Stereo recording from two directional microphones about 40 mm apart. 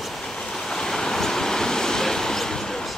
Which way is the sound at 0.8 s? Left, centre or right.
Centre.